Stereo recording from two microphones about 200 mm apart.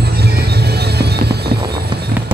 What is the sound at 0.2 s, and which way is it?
Music, 55° right (ahead or behind).